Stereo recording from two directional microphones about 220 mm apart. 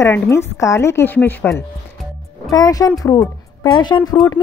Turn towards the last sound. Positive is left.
turn(degrees=20)  # may be behind; listen again after turning